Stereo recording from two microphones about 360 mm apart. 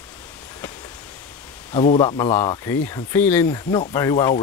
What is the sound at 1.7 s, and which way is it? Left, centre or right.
Speech, centre.